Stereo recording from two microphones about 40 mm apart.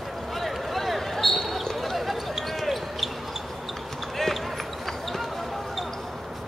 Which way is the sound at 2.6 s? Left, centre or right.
Centre.